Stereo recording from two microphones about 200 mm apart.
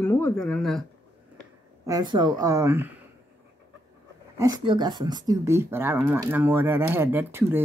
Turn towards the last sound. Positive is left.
turn(degrees=-10)  # may be behind; listen again after turning